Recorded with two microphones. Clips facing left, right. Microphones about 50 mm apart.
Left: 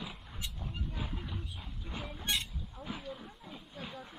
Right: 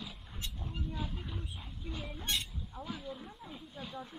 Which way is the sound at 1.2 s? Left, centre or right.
Centre.